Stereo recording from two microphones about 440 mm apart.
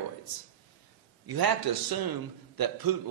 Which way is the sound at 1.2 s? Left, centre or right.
Right.